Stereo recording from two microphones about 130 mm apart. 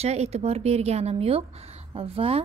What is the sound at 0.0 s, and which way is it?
Speech, 55° right (ahead or behind).